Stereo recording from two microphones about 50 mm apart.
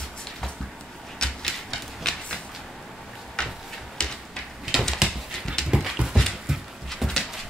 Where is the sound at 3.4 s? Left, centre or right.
Centre.